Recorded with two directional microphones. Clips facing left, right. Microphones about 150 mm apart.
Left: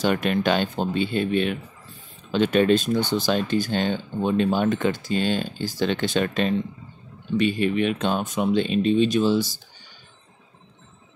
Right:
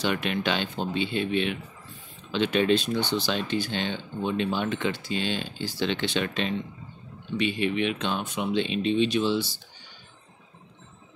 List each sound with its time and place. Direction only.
0.0 s speech: 45° left (ahead or behind)